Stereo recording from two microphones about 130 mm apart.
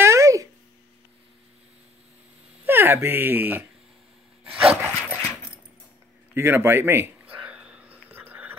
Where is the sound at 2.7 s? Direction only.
15° right (ahead or behind).